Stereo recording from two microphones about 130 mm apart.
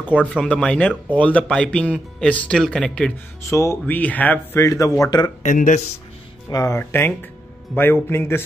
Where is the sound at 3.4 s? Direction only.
20° left (ahead or behind).